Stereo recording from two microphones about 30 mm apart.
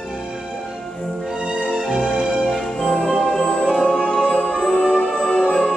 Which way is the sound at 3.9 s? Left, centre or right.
Left.